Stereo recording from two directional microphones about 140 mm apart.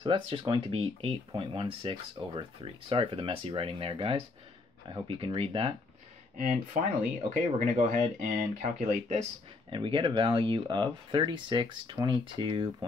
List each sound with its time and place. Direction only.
0.0 s speech: 40° right (ahead or behind)
6.3 s speech: 70° right (ahead or behind)
8.5 s speech: 55° right (ahead or behind)
9.7 s speech: 35° right (ahead or behind)